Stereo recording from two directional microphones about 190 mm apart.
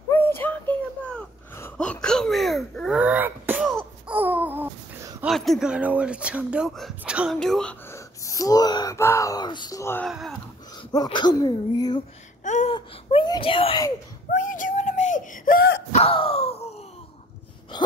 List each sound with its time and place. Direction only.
0.1 s a sound: 10° left (ahead or behind); by 3.7 s 10° right (ahead or behind)
4.1 s babbling: 10° right (ahead or behind)
5.3 s speech: centre (ahead or behind)
7.9 s speech: 15° left (ahead or behind)
10.0 s speech: centre (ahead or behind)
10.8 s speech: 25° left (ahead or behind)
12.4 s a sound: 40° left (ahead or behind)
12.7 s wail: 25° left (ahead or behind)
14.3 s whimper: 45° left (ahead or behind)
15.9 s a sound: 30° left (ahead or behind)